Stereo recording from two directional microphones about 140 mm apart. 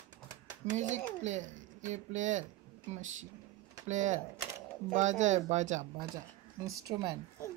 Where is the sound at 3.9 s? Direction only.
60° right (ahead or behind).